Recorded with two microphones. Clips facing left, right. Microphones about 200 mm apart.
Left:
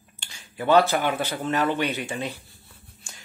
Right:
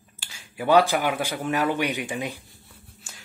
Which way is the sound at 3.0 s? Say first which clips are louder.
Left 1 dB; 5° right (ahead or behind).